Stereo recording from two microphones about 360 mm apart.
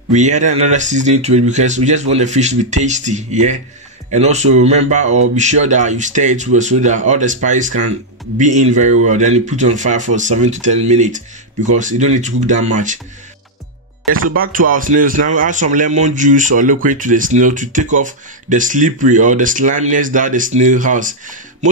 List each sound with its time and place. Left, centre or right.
0.1 s speech: centre
14.1 s speech: right
14.6 s speech: right